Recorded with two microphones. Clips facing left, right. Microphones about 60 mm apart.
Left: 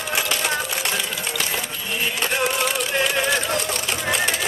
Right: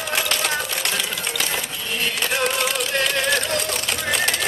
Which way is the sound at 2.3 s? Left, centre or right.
Centre.